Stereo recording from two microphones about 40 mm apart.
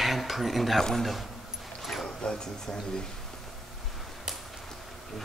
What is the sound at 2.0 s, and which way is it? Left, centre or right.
Speech, left.